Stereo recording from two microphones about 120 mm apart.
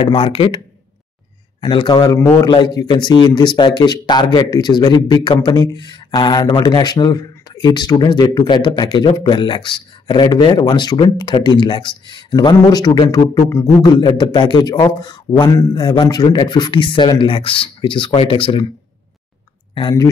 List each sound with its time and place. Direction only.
0.0 s speech: 50° left (ahead or behind)
1.6 s speech: 40° left (ahead or behind)
19.8 s speech: 35° left (ahead or behind)